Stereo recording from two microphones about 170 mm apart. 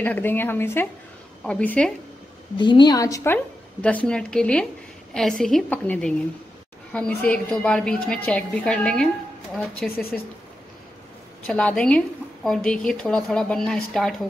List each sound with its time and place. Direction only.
0.0 s a woman's voice: 10° left (ahead or behind)
2.5 s a woman's voice: 25° left (ahead or behind)
3.8 s a woman's voice: 5° left (ahead or behind)
11.4 s a woman's voice: 5° left (ahead or behind)